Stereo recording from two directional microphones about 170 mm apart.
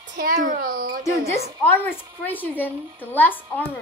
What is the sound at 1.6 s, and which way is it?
A woman's voice, 10° left (ahead or behind).